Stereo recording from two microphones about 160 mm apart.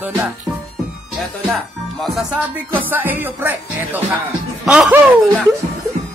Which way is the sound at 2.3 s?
10° right (ahead or behind).